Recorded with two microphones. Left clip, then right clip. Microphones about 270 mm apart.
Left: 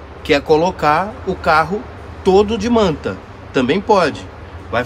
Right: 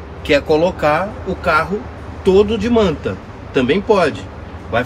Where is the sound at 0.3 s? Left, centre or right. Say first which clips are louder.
Even; centre.